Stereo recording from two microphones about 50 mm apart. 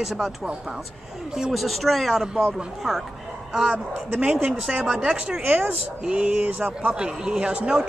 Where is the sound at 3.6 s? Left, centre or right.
Right.